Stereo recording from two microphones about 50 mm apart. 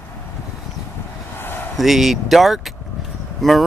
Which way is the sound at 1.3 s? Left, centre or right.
Left.